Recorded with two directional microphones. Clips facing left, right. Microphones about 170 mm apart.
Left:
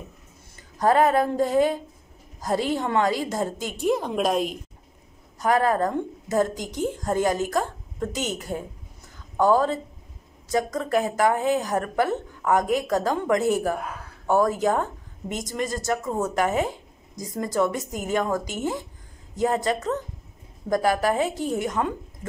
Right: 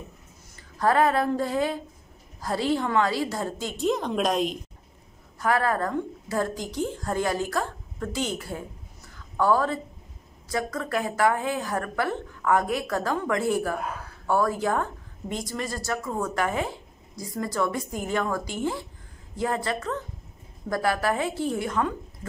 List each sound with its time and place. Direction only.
0.7 s a woman's voice: 20° left (ahead or behind)
5.4 s a woman's voice: 20° left (ahead or behind)